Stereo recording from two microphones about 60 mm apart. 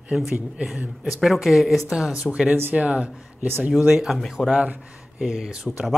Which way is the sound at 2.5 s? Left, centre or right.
Right.